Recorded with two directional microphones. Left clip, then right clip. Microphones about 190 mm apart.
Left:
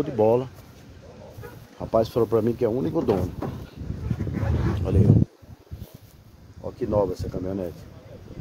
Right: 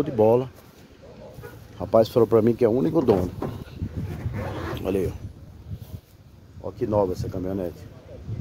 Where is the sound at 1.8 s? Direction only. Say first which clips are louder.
Right 3 dB; 30° right (ahead or behind).